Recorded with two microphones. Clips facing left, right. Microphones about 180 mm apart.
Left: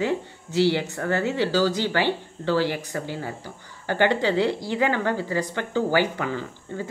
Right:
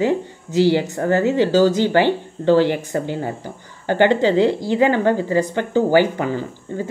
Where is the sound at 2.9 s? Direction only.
30° right (ahead or behind).